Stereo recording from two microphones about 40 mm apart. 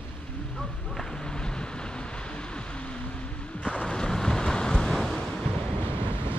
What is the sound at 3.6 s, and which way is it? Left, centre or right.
Waves, left.